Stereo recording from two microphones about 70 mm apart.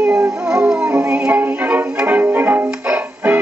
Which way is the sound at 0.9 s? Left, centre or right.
Right.